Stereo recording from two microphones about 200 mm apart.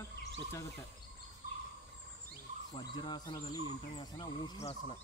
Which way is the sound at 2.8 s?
20° left (ahead or behind).